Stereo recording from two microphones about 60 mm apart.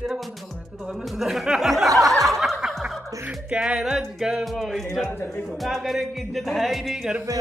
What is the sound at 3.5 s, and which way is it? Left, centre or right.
Music, centre.